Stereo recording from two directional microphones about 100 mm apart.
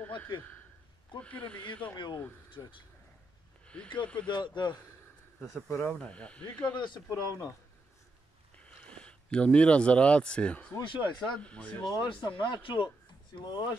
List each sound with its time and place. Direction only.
0.0 s a sound: 15° left (ahead or behind)
0.4 s a man's voice: 15° left (ahead or behind)
2.6 s speech: 35° left (ahead or behind)
3.6 s a sound: 10° left (ahead or behind)
4.3 s speech: 50° left (ahead or behind)
5.7 s speech: 25° left (ahead or behind)
5.9 s speech: 10° left (ahead or behind)
6.8 s speech: 45° left (ahead or behind)
8.6 s speech: 10° left (ahead or behind)
10.8 s speech: 55° left (ahead or behind)
11.3 s speech: 10° left (ahead or behind)
12.0 s speech: 50° left (ahead or behind)